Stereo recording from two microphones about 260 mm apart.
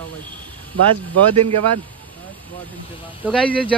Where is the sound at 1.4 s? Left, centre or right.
Right.